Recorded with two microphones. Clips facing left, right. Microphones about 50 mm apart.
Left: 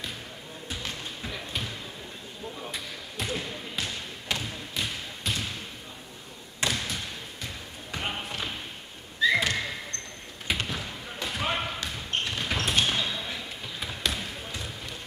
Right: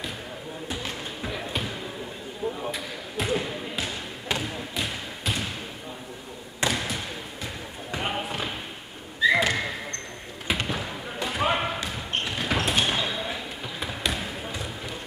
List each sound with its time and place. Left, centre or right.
0.7 s music: centre
2.7 s basketball bounce: centre
6.6 s basketball bounce: centre
7.9 s a sound: centre
9.3 s basketball bounce: centre